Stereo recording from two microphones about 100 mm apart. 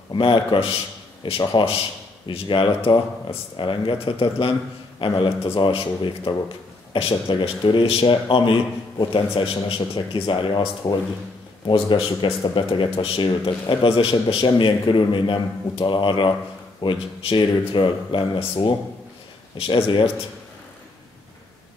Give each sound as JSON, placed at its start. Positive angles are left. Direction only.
{"t": 0.1, "sound": "speech", "side_deg": 55}
{"t": 13.7, "sound": "speech", "side_deg": 55}